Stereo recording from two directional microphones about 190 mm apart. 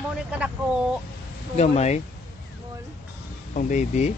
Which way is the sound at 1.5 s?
35° left (ahead or behind).